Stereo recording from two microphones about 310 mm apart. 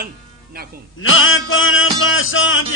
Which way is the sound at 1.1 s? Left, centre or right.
Left.